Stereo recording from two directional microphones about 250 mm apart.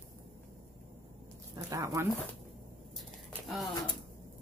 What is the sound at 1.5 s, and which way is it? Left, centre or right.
Speech, centre.